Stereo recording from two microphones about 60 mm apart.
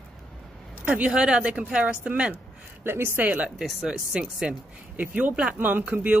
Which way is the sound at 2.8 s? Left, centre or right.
Right.